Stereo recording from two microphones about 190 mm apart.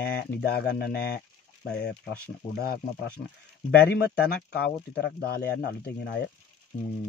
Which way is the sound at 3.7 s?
60° left (ahead or behind).